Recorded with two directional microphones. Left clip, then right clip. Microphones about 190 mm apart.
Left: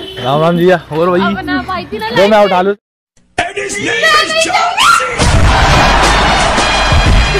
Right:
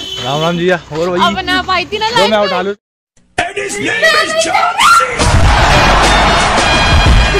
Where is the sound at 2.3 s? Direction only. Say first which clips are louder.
Left 4 dB; 20° left (ahead or behind).